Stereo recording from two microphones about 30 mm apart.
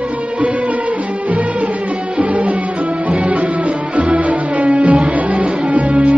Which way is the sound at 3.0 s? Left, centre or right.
Right.